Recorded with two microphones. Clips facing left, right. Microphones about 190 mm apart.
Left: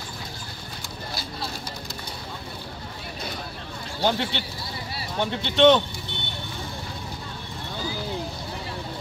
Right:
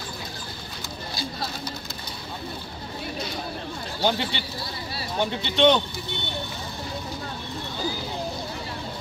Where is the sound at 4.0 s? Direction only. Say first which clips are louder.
Left 1 dB; centre (ahead or behind).